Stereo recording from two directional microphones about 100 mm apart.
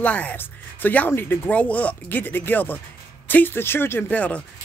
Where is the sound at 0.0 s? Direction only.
15° left (ahead or behind).